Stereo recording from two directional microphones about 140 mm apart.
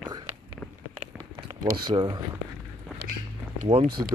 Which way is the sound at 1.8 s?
30° right (ahead or behind).